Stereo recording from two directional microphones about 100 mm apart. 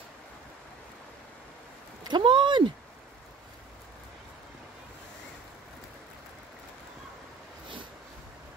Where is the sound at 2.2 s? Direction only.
55° right (ahead or behind).